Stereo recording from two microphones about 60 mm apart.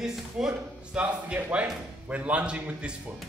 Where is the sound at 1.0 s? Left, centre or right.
Right.